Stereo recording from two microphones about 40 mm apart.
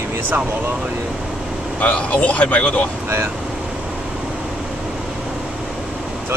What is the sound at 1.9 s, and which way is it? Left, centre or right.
Speech, left.